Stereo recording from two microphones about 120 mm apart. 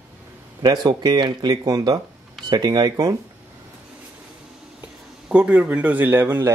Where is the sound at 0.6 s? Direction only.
35° right (ahead or behind).